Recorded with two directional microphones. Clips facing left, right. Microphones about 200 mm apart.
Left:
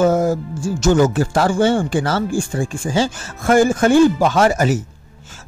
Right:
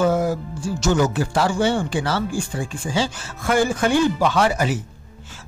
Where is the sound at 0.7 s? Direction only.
50° left (ahead or behind).